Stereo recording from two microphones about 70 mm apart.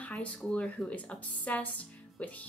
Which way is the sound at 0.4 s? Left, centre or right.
Centre.